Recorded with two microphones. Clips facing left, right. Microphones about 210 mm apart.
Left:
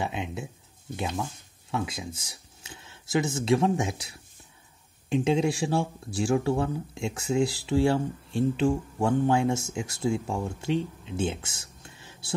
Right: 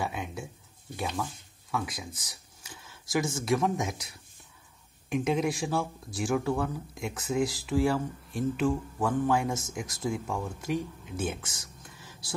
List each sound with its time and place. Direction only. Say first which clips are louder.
0.0 s a sound: left 2 dB; 20° left (ahead or behind)
3.3 s speech: left 6 dB; 25° left (ahead or behind)
5.1 s speech: left 3 dB; 30° left (ahead or behind)